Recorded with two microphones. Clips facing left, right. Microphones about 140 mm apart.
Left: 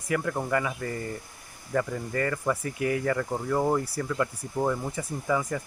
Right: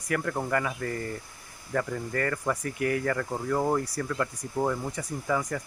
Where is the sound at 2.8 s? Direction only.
15° left (ahead or behind).